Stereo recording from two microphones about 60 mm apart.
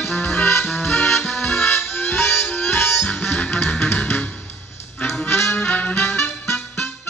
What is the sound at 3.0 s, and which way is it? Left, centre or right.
Music, centre.